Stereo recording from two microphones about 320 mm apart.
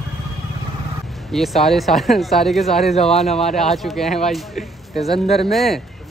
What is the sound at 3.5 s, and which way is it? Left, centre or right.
Speech, centre.